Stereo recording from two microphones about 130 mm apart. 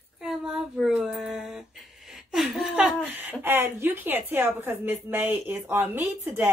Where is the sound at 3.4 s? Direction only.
15° right (ahead or behind).